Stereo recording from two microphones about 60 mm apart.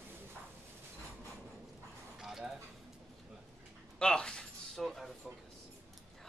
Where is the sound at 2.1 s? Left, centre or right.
Centre.